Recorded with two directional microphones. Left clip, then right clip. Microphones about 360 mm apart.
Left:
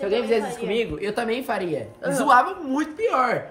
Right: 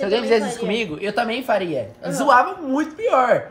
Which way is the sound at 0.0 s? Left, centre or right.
Right.